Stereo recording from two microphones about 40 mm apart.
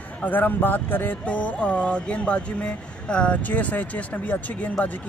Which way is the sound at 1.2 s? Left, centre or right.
Left.